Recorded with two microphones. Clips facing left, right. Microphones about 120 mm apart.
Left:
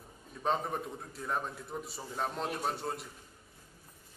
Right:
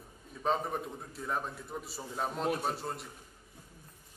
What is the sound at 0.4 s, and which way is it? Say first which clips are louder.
A man's voice: right 1 dB; centre (ahead or behind).